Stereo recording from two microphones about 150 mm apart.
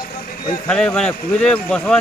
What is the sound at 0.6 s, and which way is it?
Speech, 5° left (ahead or behind).